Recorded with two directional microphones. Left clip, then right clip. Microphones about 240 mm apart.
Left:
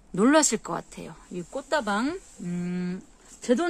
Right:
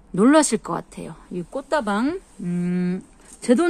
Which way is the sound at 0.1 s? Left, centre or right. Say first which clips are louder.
Right 4 dB; centre.